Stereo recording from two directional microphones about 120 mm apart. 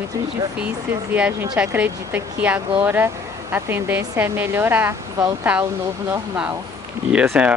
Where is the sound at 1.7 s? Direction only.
15° right (ahead or behind).